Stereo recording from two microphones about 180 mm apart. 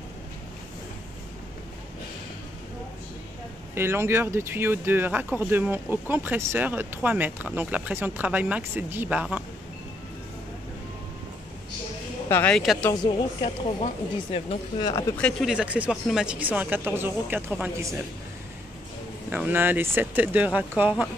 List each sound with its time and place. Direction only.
3.7 s speech: 15° right (ahead or behind)
12.3 s speech: 10° left (ahead or behind)
12.9 s a woman's voice: 25° left (ahead or behind)
15.1 s speech: 5° left (ahead or behind)
15.5 s speech: 5° right (ahead or behind)
19.3 s speech: 10° right (ahead or behind)